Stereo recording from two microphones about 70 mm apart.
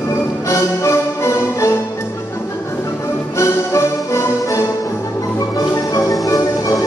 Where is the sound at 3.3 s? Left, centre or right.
Left.